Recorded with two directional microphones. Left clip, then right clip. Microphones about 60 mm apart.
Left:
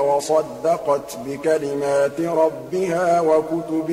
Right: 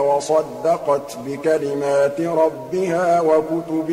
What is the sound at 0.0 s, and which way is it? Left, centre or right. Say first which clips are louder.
A man's voice: right 1 dB; left.